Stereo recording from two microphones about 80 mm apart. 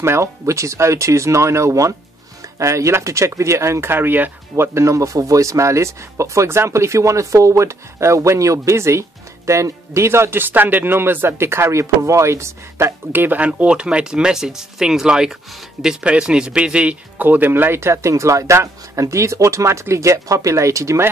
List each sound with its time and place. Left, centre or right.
0.0 s speech: right
13.5 s speech: centre; by 21.1 s right